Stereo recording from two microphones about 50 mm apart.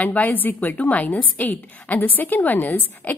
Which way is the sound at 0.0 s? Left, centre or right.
Left.